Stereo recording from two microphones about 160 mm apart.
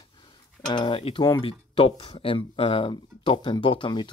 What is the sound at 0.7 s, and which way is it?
Speech, 30° left (ahead or behind).